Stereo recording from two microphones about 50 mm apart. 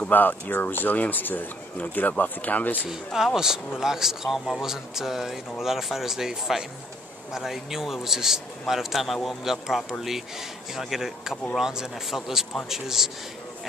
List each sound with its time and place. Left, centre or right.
0.1 s speech: left
2.9 s speech: centre